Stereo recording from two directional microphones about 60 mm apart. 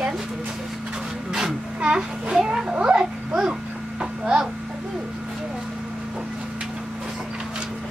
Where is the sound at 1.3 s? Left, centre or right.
Centre.